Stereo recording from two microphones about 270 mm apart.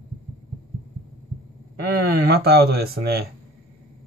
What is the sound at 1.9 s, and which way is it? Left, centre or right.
Speech, right.